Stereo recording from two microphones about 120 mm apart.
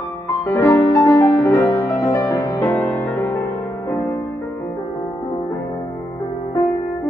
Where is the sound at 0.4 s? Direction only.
25° left (ahead or behind).